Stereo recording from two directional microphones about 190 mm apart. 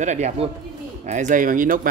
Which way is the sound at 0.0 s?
40° right (ahead or behind).